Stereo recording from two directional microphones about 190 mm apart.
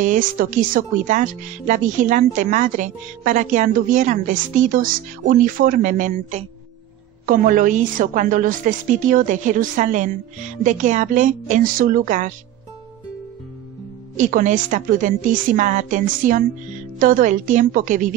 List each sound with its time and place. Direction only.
0.0 s speech: 45° right (ahead or behind)
14.1 s speech: 40° right (ahead or behind)